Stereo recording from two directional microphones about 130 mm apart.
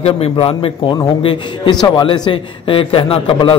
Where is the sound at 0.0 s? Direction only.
50° left (ahead or behind).